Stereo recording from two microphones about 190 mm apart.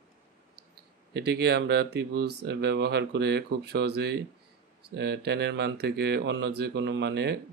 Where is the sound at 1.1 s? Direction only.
60° right (ahead or behind).